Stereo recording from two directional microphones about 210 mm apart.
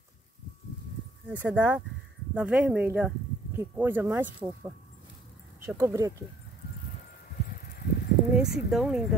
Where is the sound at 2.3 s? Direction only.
5° right (ahead or behind).